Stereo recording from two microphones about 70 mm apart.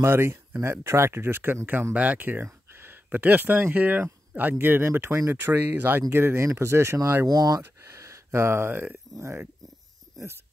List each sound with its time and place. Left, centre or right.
0.0 s speech: right
2.0 s speech: right
7.2 s speech: right
7.8 s speech: right